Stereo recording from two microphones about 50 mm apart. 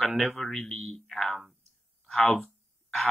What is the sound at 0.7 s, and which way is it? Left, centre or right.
Speech, left.